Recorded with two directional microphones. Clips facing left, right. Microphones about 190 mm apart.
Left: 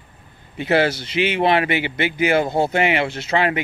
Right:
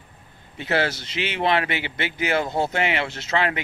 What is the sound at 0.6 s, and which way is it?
Speech, 15° left (ahead or behind).